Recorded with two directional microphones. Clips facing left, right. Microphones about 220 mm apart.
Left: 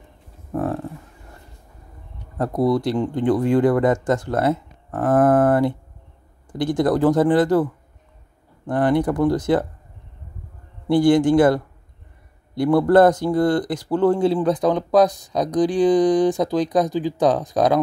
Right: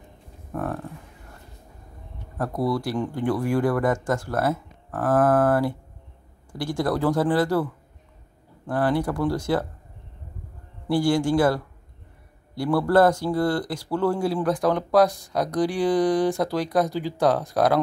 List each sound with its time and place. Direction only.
0.5 s a sound: 25° left (ahead or behind)
2.3 s speech: 20° left (ahead or behind)
8.6 s speech: 20° left (ahead or behind)
10.9 s speech: 20° left (ahead or behind)